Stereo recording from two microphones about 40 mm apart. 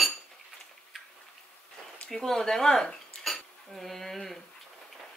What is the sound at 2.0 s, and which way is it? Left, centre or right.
Speech, centre.